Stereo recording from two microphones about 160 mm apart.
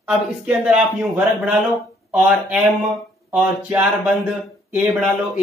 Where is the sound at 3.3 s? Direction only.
10° right (ahead or behind).